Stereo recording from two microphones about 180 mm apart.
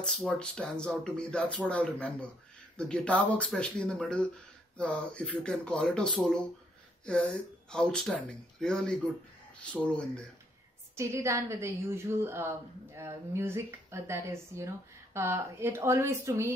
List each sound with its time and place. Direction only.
0.0 s speech: 5° left (ahead or behind)
11.0 s a woman's voice: 15° right (ahead or behind)